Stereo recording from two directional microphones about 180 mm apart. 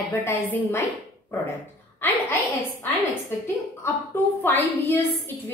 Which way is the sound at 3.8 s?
10° left (ahead or behind).